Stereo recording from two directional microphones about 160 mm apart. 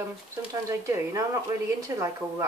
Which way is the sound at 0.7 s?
20° right (ahead or behind).